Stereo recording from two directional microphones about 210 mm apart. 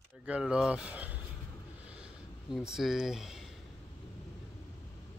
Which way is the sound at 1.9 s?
5° right (ahead or behind).